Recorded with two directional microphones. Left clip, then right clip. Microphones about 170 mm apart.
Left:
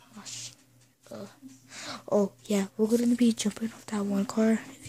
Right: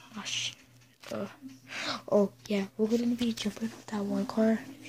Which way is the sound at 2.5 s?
35° left (ahead or behind).